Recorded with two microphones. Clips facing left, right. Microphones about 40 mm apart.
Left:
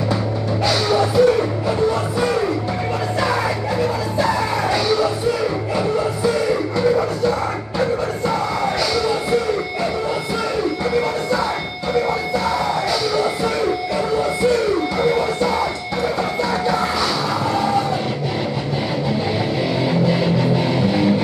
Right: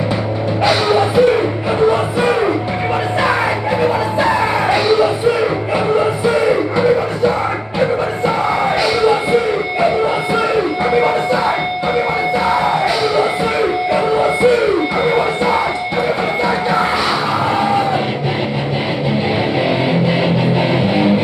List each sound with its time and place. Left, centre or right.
0.7 s music: right
3.8 s music: right
9.0 s music: right
10.5 s music: right
12.4 s music: right
19.9 s music: right